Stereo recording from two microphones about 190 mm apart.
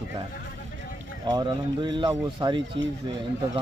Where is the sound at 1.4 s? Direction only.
20° right (ahead or behind).